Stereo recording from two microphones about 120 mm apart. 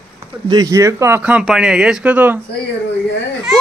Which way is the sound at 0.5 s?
30° right (ahead or behind).